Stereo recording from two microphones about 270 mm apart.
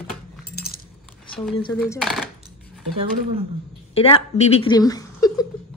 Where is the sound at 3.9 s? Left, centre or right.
Left.